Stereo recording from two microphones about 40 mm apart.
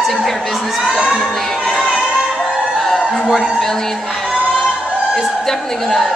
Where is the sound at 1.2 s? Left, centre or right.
Centre.